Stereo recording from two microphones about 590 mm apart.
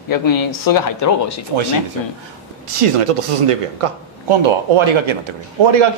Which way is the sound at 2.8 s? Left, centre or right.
Right.